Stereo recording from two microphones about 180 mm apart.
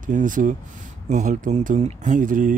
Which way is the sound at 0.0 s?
45° right (ahead or behind).